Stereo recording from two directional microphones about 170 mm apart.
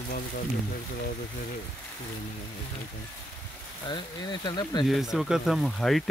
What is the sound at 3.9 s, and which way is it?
Speech, 25° left (ahead or behind).